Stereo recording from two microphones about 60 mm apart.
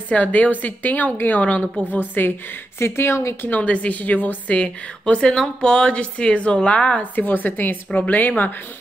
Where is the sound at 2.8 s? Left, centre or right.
Left.